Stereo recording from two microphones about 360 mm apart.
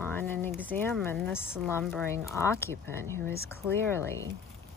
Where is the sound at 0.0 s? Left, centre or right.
Centre.